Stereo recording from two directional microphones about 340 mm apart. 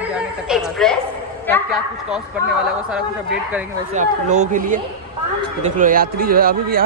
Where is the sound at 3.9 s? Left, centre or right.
Right.